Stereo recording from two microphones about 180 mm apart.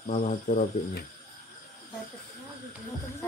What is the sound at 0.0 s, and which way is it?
Speech, 45° left (ahead or behind).